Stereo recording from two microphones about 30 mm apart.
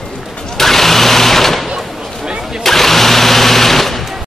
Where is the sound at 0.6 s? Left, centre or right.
Centre.